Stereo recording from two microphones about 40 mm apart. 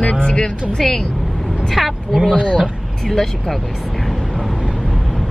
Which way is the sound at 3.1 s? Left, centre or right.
Centre.